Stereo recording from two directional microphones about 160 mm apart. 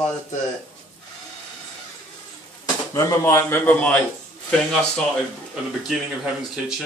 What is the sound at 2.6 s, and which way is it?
Speech, 20° left (ahead or behind).